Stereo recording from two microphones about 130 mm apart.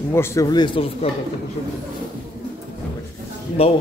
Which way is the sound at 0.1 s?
20° left (ahead or behind).